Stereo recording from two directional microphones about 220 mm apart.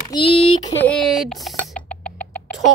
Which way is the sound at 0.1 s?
25° left (ahead or behind).